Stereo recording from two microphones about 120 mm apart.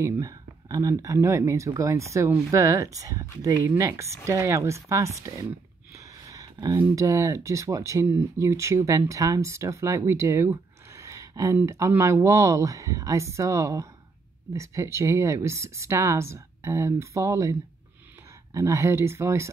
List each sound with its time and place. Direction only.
0.0 s speech: 25° right (ahead or behind)
6.2 s a sound: 30° right (ahead or behind)
6.8 s speech: 25° right (ahead or behind)